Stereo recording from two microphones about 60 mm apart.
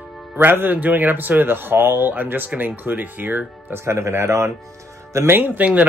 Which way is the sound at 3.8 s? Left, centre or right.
Right.